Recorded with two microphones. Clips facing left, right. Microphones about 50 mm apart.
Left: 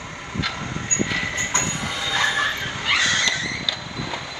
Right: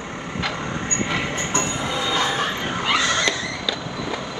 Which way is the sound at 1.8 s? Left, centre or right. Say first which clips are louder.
Left 1 dB; right.